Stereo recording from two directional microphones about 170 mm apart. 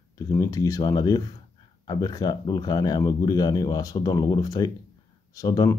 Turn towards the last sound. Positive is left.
turn(degrees=20)  # may be behind; listen again after turning